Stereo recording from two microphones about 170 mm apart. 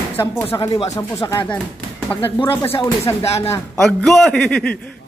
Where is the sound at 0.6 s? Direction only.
30° left (ahead or behind).